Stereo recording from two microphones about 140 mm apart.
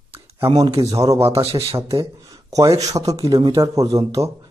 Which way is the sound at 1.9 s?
20° right (ahead or behind).